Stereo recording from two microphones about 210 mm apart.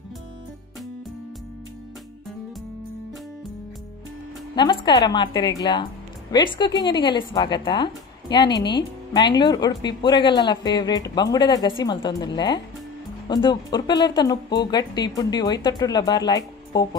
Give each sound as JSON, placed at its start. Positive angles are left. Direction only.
{"t": 4.6, "sound": "speech", "side_deg": 20}